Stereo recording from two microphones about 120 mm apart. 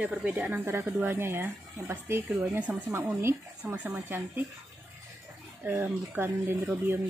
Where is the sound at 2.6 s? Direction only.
10° right (ahead or behind).